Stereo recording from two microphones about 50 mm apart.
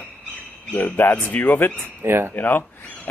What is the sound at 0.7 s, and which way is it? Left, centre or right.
Speech, left.